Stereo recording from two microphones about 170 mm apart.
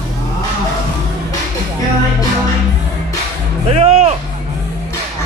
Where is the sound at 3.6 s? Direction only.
35° right (ahead or behind).